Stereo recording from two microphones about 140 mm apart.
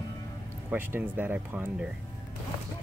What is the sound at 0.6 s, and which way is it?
Speech, 15° right (ahead or behind).